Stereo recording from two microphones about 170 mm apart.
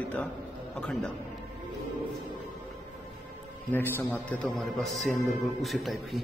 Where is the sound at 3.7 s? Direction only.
10° left (ahead or behind).